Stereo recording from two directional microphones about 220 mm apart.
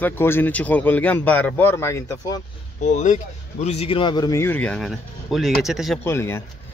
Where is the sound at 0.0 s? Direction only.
10° left (ahead or behind).